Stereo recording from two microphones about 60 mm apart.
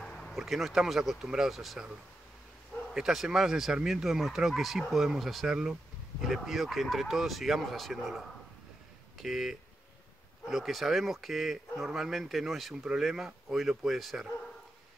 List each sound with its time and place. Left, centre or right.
0.0 s a sound: centre
0.3 s speech: centre
2.9 s speech: centre